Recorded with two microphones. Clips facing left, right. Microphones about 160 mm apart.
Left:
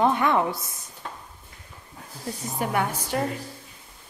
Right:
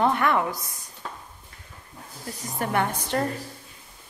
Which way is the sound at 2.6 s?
5° left (ahead or behind).